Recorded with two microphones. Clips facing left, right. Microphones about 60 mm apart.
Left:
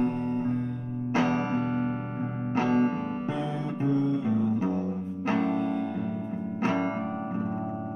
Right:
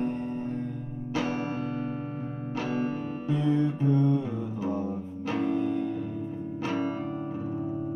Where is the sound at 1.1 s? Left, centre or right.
Left.